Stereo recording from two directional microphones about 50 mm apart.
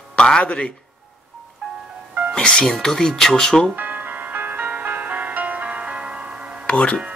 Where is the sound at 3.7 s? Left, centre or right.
Right.